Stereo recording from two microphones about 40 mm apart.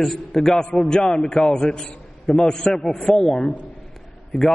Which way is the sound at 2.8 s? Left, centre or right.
Left.